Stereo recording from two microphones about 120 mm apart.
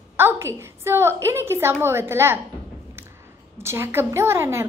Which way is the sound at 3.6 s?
20° right (ahead or behind).